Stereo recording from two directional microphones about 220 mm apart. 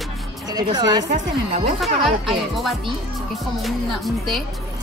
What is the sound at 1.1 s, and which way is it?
Speech, 35° right (ahead or behind).